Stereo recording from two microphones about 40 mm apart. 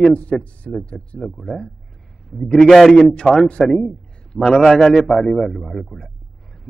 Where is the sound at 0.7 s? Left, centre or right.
Centre.